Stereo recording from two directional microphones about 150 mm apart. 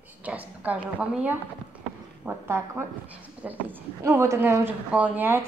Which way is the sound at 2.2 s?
15° right (ahead or behind).